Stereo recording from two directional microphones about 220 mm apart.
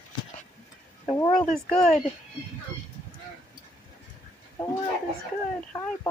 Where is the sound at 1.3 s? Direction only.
Centre (ahead or behind).